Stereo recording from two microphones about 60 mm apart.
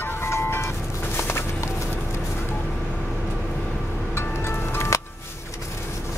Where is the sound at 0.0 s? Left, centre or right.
Left.